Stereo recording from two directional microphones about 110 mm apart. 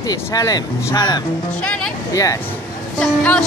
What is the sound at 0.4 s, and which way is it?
Speech, 35° left (ahead or behind).